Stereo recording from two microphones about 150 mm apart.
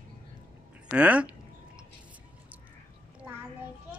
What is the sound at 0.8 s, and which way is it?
Speech, 10° right (ahead or behind).